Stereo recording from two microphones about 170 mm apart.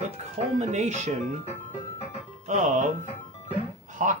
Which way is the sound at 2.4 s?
45° right (ahead or behind).